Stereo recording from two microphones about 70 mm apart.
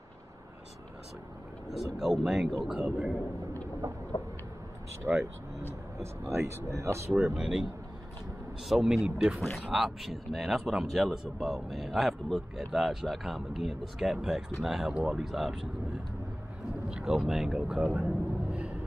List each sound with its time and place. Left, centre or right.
2.0 s speech: centre
4.1 s a sound: left
5.1 s speech: right
6.2 s speech: right
7.1 s speech: centre
8.6 s speech: centre
16.9 s speech: centre
17.8 s a sound: centre